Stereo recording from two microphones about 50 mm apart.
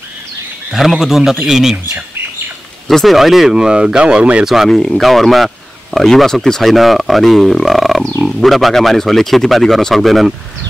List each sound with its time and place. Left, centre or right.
0.7 s speech: centre
2.9 s speech: centre
3.2 s speech: centre; by 4.5 s right
4.6 s speech: centre